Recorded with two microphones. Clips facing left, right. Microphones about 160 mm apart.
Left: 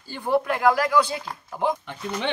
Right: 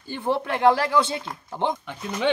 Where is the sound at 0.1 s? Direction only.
20° right (ahead or behind).